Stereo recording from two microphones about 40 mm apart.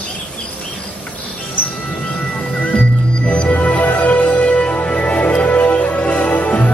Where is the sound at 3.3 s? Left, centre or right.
Left.